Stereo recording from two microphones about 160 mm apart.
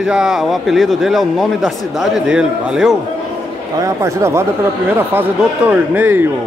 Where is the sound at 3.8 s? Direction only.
20° right (ahead or behind).